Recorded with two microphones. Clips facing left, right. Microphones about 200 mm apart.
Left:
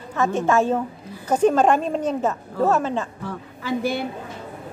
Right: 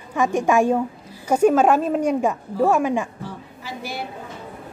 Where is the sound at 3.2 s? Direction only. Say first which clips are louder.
Left 6 dB; 55° left (ahead or behind).